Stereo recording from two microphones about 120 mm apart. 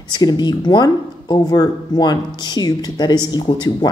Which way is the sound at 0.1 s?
35° left (ahead or behind).